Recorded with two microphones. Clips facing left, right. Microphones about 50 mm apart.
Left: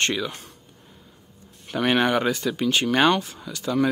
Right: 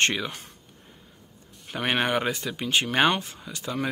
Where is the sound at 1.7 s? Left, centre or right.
Right.